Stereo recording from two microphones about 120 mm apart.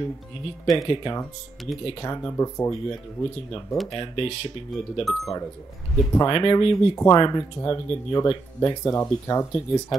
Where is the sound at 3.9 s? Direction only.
45° left (ahead or behind).